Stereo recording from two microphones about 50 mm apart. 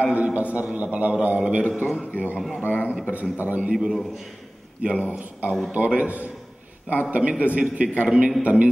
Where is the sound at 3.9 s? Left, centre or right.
Centre.